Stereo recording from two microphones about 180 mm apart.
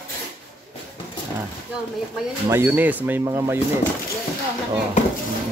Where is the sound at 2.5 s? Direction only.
10° right (ahead or behind).